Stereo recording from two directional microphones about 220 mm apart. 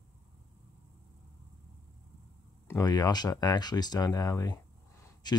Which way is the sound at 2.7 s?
15° left (ahead or behind).